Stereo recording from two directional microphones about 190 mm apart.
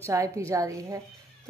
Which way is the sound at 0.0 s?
15° right (ahead or behind).